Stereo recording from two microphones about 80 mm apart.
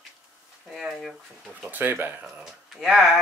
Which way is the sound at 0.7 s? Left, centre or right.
Centre.